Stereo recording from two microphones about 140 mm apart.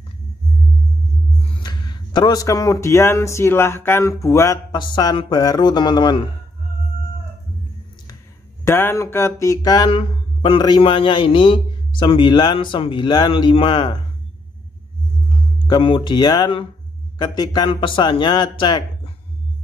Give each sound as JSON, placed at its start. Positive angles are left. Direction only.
{"t": 1.6, "sound": "speech", "side_deg": 30}
{"t": 4.7, "sound": "a man's voice", "side_deg": 35}
{"t": 8.6, "sound": "speech", "side_deg": 15}
{"t": 9.8, "sound": "a man's voice", "side_deg": 40}
{"t": 15.6, "sound": "a man's voice", "side_deg": 35}